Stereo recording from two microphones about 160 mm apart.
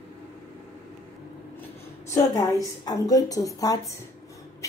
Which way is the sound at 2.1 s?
20° left (ahead or behind).